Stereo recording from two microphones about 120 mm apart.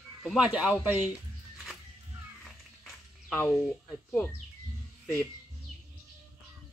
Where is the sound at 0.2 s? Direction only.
10° right (ahead or behind).